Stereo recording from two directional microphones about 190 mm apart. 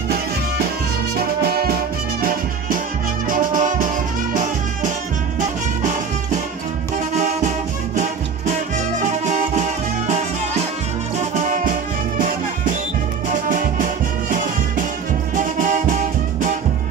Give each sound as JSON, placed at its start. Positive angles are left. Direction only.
{"t": 1.1, "sound": "music", "side_deg": -50}
{"t": 3.3, "sound": "music", "side_deg": -45}
{"t": 7.2, "sound": "music", "side_deg": -40}
{"t": 9.2, "sound": "music", "side_deg": -40}
{"t": 13.3, "sound": "music", "side_deg": -45}
{"t": 15.3, "sound": "music", "side_deg": -40}